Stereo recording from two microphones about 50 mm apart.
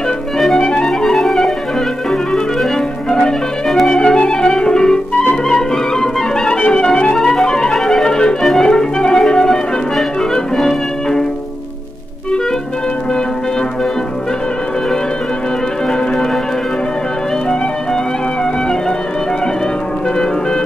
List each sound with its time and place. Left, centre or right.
0.6 s music: centre
2.0 s clarinet: centre
4.0 s clarinet: centre
5.5 s music: centre